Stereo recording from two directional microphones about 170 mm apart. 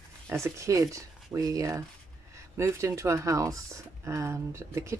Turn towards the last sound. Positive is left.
turn(degrees=-15)  # may be behind; listen again after turning